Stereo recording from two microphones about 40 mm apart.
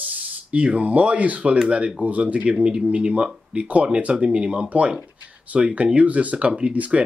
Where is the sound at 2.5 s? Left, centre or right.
Right.